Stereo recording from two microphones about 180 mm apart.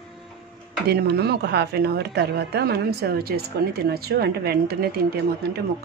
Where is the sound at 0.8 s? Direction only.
65° right (ahead or behind).